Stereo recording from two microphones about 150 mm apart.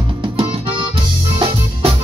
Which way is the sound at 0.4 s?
40° right (ahead or behind).